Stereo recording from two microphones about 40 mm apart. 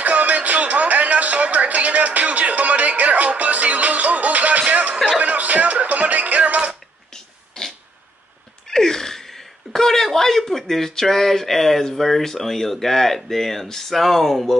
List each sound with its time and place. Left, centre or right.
0.0 s music: right
7.6 s a sound: centre
8.6 s gasp: centre
9.7 s speech: centre